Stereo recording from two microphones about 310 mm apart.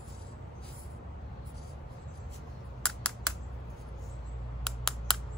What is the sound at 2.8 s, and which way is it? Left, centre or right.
Computer keyboard, centre.